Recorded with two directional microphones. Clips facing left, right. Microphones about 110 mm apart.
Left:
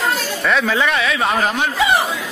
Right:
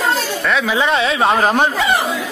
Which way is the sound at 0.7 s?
20° right (ahead or behind).